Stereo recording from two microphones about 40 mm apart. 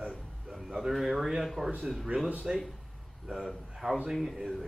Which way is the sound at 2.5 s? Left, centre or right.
Centre.